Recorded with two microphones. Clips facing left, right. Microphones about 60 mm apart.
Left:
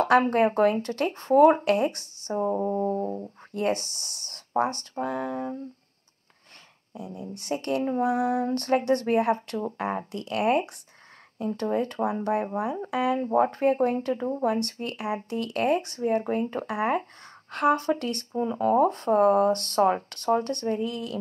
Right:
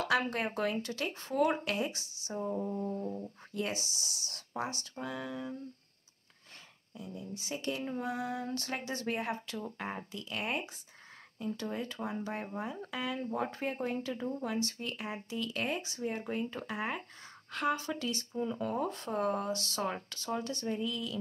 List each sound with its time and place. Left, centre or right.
0.0 s speech: left
2.4 s speech: left
6.9 s speech: left